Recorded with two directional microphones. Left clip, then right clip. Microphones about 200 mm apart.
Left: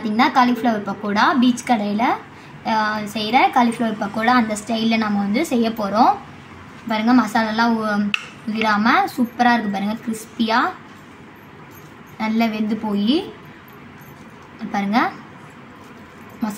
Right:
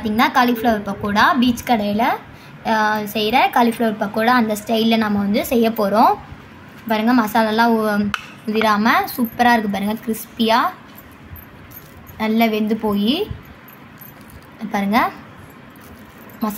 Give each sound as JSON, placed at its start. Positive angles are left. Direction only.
{"t": 0.0, "sound": "a woman's voice", "side_deg": -25}
{"t": 12.2, "sound": "a woman's voice", "side_deg": -30}
{"t": 14.7, "sound": "a woman's voice", "side_deg": -25}